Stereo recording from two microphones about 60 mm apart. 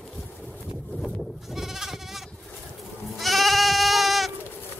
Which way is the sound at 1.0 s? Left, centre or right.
Centre.